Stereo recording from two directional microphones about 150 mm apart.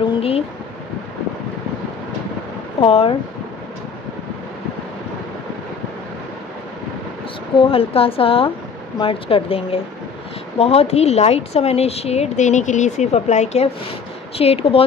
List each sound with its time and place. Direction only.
2.8 s a woman's voice: 40° left (ahead or behind)
7.5 s a woman's voice: 40° left (ahead or behind)